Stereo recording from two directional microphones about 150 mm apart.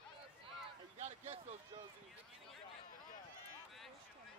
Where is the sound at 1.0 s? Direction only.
50° right (ahead or behind).